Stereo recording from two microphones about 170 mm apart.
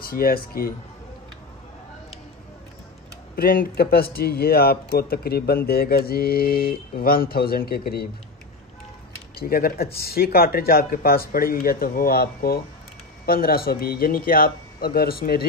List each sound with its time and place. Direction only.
0.0 s speech: 60° left (ahead or behind)
3.3 s speech: 60° left (ahead or behind)
9.4 s speech: 60° left (ahead or behind)